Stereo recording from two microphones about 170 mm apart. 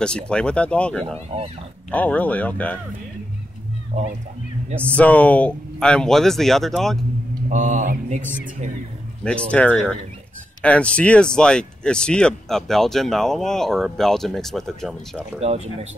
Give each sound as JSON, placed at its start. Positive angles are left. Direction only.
{"t": 0.0, "sound": "speech", "side_deg": 5}
{"t": 3.9, "sound": "mantra", "side_deg": -45}
{"t": 4.8, "sound": "speech", "side_deg": 10}
{"t": 7.4, "sound": "mantra", "side_deg": -45}
{"t": 9.2, "sound": "speech", "side_deg": 5}
{"t": 15.4, "sound": "speech", "side_deg": -40}